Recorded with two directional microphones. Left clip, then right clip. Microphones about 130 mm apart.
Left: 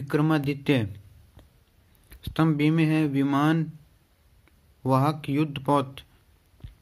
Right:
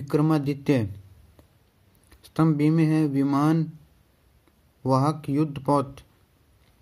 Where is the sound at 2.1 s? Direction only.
15° right (ahead or behind).